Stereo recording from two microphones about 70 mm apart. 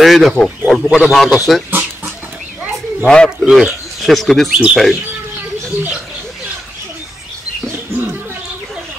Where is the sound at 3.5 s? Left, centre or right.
Centre.